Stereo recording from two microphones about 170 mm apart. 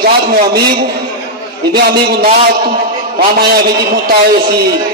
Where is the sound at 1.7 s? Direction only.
70° right (ahead or behind).